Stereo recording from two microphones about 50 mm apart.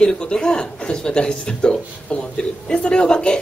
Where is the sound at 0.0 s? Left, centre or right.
Centre.